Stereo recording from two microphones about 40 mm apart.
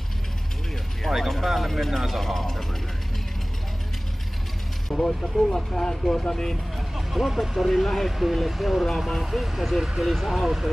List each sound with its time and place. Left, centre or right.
1.0 s speech: centre
4.8 s speech: centre
7.1 s speech: centre